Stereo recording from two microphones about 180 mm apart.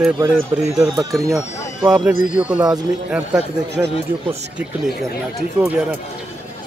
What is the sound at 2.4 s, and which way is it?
Speech, 20° right (ahead or behind).